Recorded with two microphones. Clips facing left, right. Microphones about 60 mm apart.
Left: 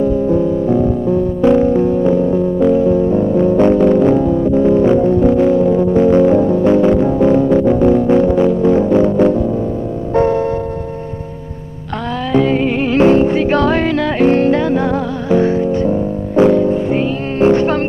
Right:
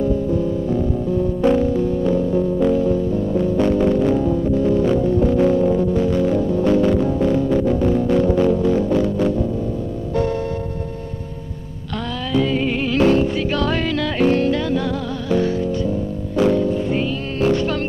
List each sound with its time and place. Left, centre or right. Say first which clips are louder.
0.3 s music: left 7 dB; left
1.4 s music: left 6 dB; left
5.4 s music: left 4 dB; centre; by 10.4 s left
12.3 s music: left 6 dB; left